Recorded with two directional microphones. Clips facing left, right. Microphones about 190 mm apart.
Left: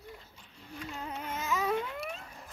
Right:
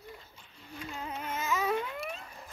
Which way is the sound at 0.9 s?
5° right (ahead or behind).